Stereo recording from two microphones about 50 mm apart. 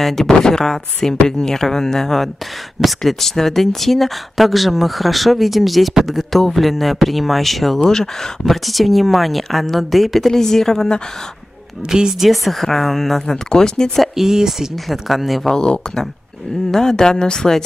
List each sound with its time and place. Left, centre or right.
0.0 s speech: centre
11.9 s speech: centre
12.3 s speech: centre
14.2 s speech: centre
15.5 s speech: centre